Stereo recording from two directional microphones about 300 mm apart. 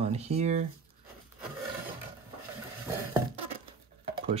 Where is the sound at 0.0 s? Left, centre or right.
Right.